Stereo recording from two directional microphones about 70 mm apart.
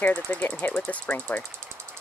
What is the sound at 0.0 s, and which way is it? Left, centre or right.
Speech, left.